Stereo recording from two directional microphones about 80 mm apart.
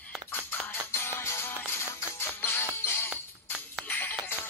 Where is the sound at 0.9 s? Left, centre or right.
Left.